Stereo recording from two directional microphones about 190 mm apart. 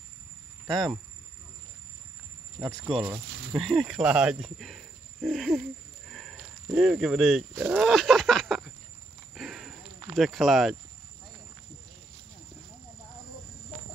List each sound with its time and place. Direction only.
0.7 s speech: 20° right (ahead or behind)
2.6 s speech: 20° right (ahead or behind)
3.5 s speech: centre (ahead or behind)
9.3 s a sound: centre (ahead or behind)
10.1 s speech: centre (ahead or behind)